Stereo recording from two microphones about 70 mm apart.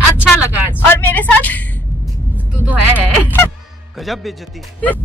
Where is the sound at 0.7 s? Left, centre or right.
Left.